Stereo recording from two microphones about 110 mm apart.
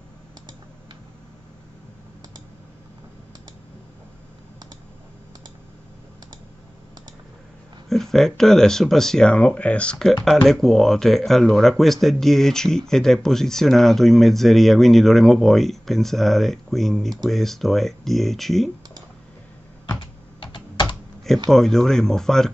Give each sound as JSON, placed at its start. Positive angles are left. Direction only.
{"t": 7.9, "sound": "speech", "side_deg": 0}
{"t": 20.3, "sound": "computer keyboard", "side_deg": 45}
{"t": 21.5, "sound": "speech", "side_deg": 0}